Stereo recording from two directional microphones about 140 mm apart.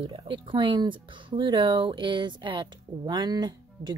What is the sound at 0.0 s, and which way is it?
Speech, 35° right (ahead or behind).